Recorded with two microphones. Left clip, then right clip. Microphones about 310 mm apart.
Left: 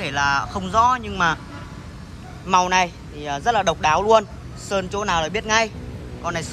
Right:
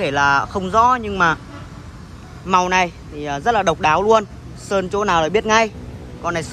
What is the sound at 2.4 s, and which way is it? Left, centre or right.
A man's voice, centre.